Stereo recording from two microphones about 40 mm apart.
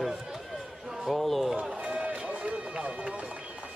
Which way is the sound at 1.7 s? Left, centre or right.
Right.